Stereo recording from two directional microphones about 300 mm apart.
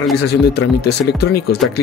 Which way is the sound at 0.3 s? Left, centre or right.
Left.